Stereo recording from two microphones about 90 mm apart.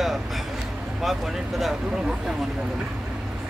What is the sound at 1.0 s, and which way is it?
Speech, centre (ahead or behind).